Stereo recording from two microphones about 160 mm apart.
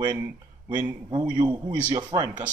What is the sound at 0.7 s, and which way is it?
Speech, 10° right (ahead or behind).